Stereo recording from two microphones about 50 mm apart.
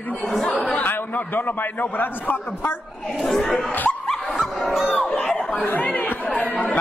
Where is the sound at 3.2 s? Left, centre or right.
Centre.